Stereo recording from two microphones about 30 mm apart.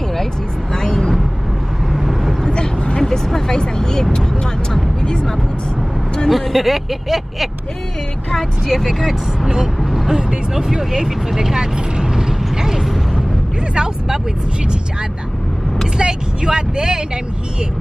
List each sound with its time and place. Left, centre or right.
0.7 s vehicle: centre
1.9 s vehicle: centre
3.0 s vehicle: centre
6.2 s speech: centre
8.6 s speech: centre
9.8 s vehicle: centre
10.1 s speech: right
12.8 s a sound: centre
13.7 s speech: centre
16.0 s speech: right